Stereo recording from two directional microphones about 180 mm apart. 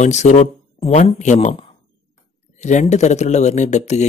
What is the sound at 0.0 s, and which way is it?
Speech, 40° left (ahead or behind).